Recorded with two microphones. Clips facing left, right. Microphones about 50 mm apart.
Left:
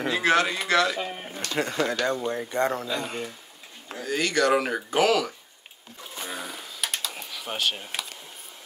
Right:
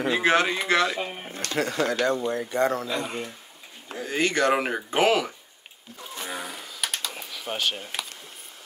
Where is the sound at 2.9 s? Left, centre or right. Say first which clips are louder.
Right 1 dB; right.